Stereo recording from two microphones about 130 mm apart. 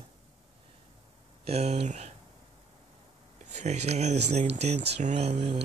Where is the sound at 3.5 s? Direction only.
65° right (ahead or behind).